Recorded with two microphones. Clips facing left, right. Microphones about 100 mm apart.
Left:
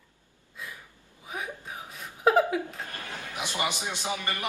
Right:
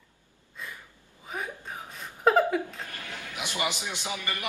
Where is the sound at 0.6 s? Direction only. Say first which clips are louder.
Right 1 dB; 5° left (ahead or behind).